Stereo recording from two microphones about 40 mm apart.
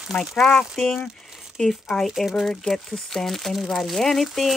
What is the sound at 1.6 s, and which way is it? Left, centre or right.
Speech, left.